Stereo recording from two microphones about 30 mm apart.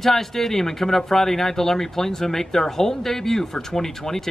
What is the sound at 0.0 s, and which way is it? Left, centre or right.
Speech, centre.